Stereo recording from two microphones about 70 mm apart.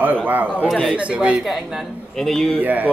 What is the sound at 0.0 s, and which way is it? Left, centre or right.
Speech, right.